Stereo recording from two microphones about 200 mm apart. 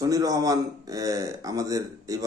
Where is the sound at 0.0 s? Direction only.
15° right (ahead or behind).